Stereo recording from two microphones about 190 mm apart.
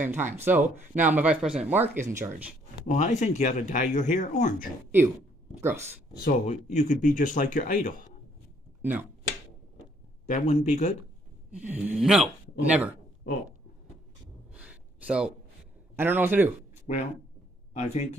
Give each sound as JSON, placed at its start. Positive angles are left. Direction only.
{"t": 0.0, "sound": "speech", "side_deg": -10}
{"t": 2.9, "sound": "speech", "side_deg": 40}
{"t": 5.6, "sound": "speech", "side_deg": -10}
{"t": 6.2, "sound": "speech", "side_deg": 40}
{"t": 10.2, "sound": "speech", "side_deg": 40}
{"t": 11.5, "sound": "speech", "side_deg": -10}
{"t": 14.5, "sound": "a sound", "side_deg": -5}
{"t": 16.0, "sound": "speech", "side_deg": -10}
{"t": 16.9, "sound": "speech", "side_deg": 40}